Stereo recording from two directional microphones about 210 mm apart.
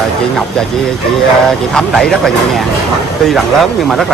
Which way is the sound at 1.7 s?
Centre (ahead or behind).